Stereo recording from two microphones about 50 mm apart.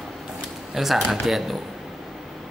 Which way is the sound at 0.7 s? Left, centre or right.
Centre.